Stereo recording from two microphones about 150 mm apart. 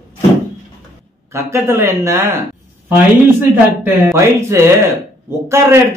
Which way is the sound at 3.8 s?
20° right (ahead or behind).